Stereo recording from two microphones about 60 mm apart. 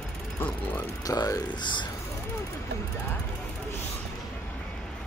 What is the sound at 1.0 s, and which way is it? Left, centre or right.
Speech, left.